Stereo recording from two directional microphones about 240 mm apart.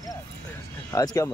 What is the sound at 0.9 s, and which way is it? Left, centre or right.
Speech, centre.